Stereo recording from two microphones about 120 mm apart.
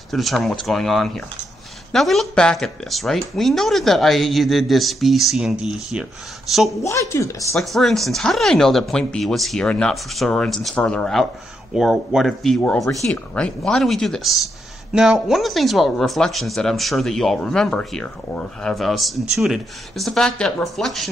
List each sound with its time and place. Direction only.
0.1 s speech: centre (ahead or behind)
6.8 s speech: 25° left (ahead or behind)
7.5 s speech: centre (ahead or behind)